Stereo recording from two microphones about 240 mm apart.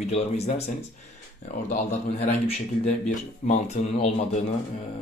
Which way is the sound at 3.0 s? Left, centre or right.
Left.